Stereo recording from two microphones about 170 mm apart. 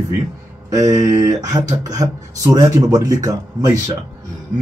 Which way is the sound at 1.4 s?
20° right (ahead or behind).